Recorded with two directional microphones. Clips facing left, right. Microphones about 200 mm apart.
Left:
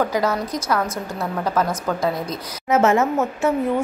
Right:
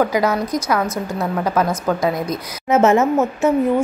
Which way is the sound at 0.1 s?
10° right (ahead or behind).